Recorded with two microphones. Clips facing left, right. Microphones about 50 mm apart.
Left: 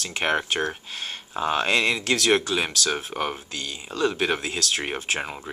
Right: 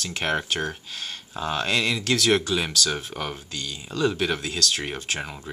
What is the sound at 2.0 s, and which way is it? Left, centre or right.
Speech, centre.